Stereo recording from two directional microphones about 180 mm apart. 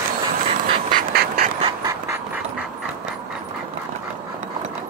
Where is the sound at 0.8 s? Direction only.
55° right (ahead or behind).